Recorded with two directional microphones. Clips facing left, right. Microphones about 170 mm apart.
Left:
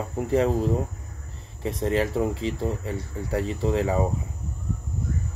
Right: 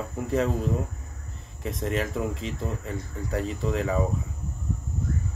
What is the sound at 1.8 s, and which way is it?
Speech, 30° left (ahead or behind).